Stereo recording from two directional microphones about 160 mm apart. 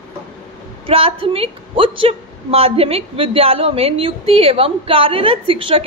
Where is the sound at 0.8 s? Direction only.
35° right (ahead or behind).